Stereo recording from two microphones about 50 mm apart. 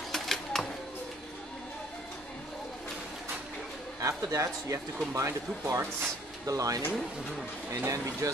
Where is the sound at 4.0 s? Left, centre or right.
Right.